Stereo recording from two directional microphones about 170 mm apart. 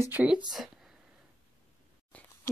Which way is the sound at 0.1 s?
10° right (ahead or behind).